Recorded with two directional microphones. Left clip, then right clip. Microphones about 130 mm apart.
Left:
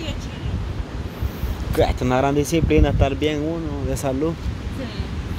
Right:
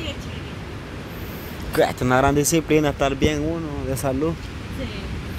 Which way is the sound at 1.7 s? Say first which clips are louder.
Right 1 dB; centre (ahead or behind).